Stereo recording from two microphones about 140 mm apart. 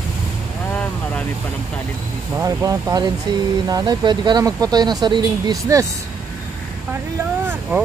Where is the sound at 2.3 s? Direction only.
25° right (ahead or behind).